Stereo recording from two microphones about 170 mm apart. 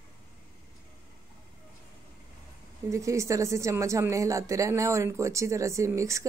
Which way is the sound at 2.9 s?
20° right (ahead or behind).